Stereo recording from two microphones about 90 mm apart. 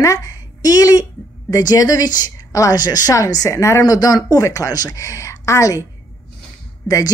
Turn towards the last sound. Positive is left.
turn(degrees=40)  # may be behind; listen again after turning